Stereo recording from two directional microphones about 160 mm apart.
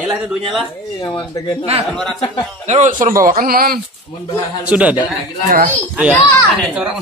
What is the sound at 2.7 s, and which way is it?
Speech, 50° right (ahead or behind).